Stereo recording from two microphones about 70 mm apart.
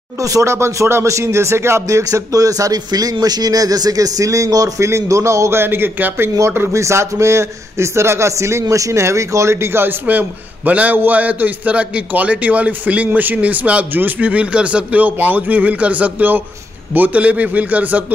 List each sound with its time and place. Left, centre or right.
0.2 s a man's voice: right
6.7 s a man's voice: right